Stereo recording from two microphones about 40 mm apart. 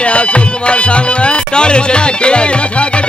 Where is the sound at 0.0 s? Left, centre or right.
Left.